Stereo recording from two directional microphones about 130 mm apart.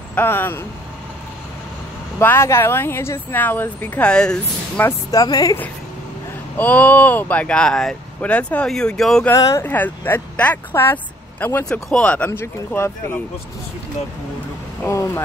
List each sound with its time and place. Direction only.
0.1 s speech: 15° left (ahead or behind)
2.1 s speech: 20° left (ahead or behind)
4.8 s speech: 30° left (ahead or behind)
6.6 s speech: 10° left (ahead or behind)
9.3 s speech: 25° left (ahead or behind); by 12.3 s 10° left (ahead or behind)
12.3 s speech: 20° left (ahead or behind)
14.9 s speech: 25° left (ahead or behind)